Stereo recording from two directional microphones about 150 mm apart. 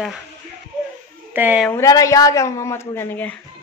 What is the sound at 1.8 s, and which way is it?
Speech, 20° left (ahead or behind).